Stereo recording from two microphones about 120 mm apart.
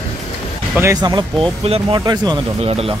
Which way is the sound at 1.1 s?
50° right (ahead or behind).